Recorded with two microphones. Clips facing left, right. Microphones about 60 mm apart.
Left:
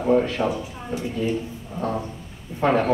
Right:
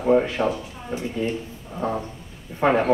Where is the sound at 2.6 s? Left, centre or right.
Centre.